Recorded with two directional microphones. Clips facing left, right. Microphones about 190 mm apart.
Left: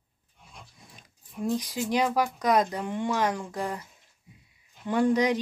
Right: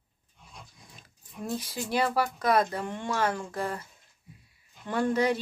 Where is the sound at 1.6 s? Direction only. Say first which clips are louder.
Right 1 dB; 15° left (ahead or behind).